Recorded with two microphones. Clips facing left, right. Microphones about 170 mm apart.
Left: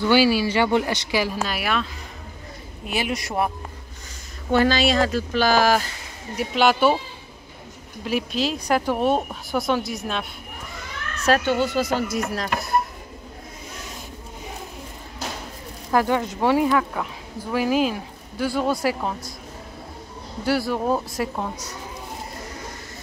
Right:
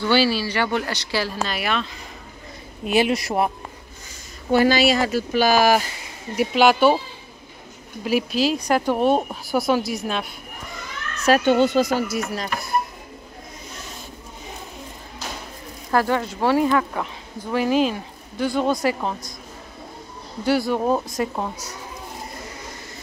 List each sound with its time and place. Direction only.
0.0 s speech: 10° left (ahead or behind)
2.8 s speech: 20° right (ahead or behind)
4.5 s speech: 10° right (ahead or behind)
8.0 s speech: 5° right (ahead or behind)
11.4 s speech: 20° right (ahead or behind)
11.8 s speech: 10° right (ahead or behind)
12.3 s speech: centre (ahead or behind)
15.9 s speech: 15° left (ahead or behind)
20.4 s speech: centre (ahead or behind)